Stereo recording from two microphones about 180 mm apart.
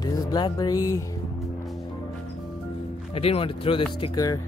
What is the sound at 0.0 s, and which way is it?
Music, 20° left (ahead or behind).